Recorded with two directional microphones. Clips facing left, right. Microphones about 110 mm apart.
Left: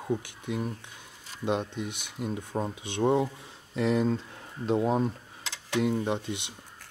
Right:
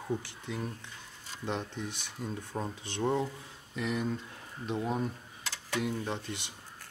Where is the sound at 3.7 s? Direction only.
30° left (ahead or behind).